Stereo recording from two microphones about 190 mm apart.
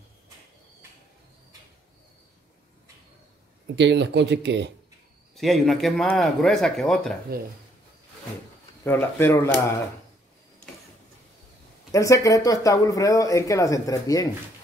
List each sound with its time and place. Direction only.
3.6 s speech: 65° right (ahead or behind)
5.3 s speech: centre (ahead or behind)
8.8 s speech: 10° left (ahead or behind)
11.9 s speech: 15° left (ahead or behind)